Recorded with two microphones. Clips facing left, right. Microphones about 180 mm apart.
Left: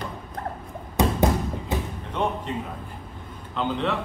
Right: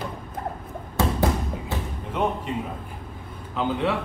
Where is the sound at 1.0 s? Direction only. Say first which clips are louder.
Left 2 dB; 20° left (ahead or behind).